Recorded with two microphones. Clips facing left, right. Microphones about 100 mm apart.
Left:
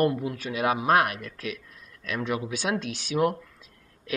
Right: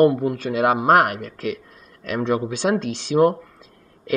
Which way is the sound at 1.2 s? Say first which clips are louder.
Right 8 dB; 25° right (ahead or behind).